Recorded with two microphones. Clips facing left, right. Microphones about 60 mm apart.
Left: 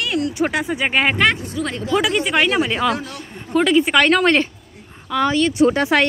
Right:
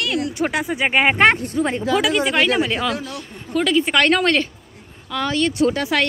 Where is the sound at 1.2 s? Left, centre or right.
Right.